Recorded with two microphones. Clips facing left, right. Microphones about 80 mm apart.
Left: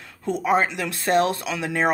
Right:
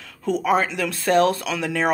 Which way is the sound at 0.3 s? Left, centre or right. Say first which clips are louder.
Right 1 dB; left.